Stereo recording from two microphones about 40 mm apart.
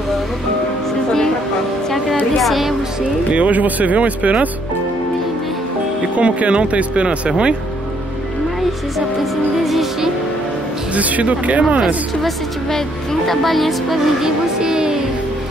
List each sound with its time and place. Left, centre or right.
2.3 s speech: centre
3.3 s speech: right
6.1 s speech: right
9.2 s speech: centre
11.0 s speech: right
13.3 s speech: centre
14.2 s music: centre